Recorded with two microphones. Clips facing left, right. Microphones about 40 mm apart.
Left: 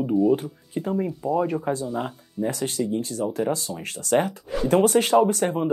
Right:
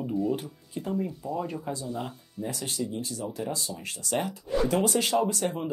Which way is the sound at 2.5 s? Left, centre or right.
Left.